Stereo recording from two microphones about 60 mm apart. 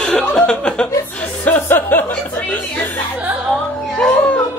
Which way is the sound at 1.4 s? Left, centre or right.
Left.